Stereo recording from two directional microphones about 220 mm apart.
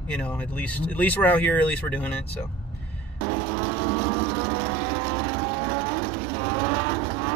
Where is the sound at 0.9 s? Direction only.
5° left (ahead or behind).